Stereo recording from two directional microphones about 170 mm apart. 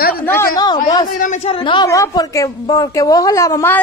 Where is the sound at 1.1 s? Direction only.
45° left (ahead or behind).